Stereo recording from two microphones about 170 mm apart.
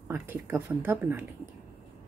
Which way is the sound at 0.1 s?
10° right (ahead or behind).